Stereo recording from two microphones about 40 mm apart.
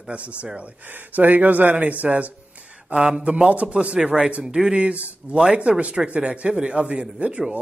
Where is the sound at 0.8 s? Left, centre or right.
Right; by 4.8 s centre.